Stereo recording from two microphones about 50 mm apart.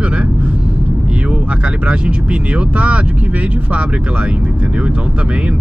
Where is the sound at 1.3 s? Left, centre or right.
Right.